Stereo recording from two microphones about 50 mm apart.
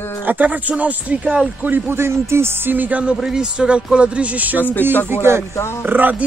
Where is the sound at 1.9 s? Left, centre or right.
Right.